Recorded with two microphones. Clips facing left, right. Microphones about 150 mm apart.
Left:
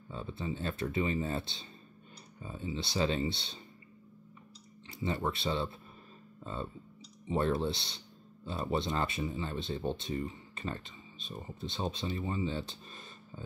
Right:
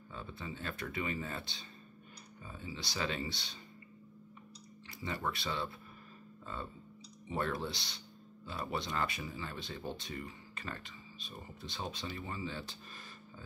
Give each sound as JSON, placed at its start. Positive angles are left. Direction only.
{"t": 0.1, "sound": "speech", "side_deg": 25}
{"t": 5.0, "sound": "speech", "side_deg": 25}